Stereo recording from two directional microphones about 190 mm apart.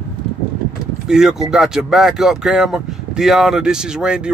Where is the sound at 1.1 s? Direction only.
5° right (ahead or behind).